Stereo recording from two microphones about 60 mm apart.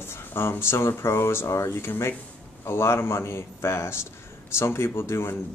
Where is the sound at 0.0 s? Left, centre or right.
Left.